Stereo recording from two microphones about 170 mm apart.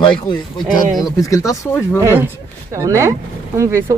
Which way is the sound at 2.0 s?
15° right (ahead or behind).